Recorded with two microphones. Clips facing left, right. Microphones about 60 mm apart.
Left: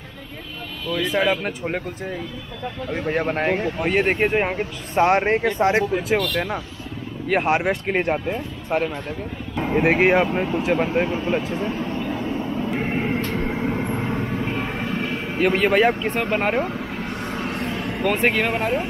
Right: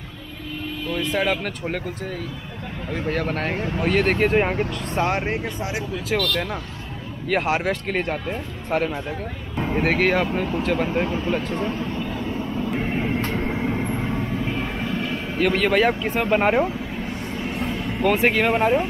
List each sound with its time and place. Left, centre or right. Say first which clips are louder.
1.1 s speech: left 3 dB; centre
4.9 s speech: left 6 dB; left
5.4 s speech: left 9 dB; left
7.2 s speech: left 2 dB; centre
7.8 s speech: left 3 dB; left
8.3 s speech: left 1 dB; centre
9.6 s vehicle: left 2 dB; centre
9.8 s speech: left 3 dB; centre
12.8 s train: left 1 dB; centre
13.3 s train: even; centre
14.5 s vehicle: left 1 dB; centre
15.3 s speech: left 1 dB; centre
17.3 s vehicle: left 1 dB; left
17.8 s speech: right 1 dB; centre